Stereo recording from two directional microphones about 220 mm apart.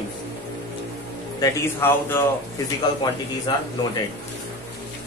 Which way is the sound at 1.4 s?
10° left (ahead or behind).